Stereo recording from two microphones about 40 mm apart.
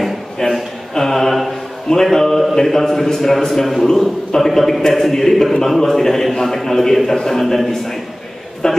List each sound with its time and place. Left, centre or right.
0.4 s a sound: centre
0.9 s mantra: centre
1.9 s a man's voice: centre